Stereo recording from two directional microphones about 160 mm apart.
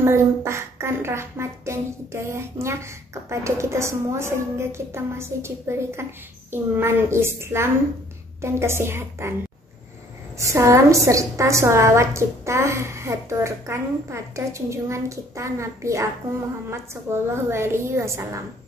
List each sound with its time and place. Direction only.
0.0 s speech: 15° right (ahead or behind)
10.4 s speech: 20° right (ahead or behind)